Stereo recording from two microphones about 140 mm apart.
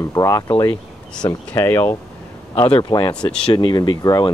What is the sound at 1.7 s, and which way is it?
Speech, 15° left (ahead or behind).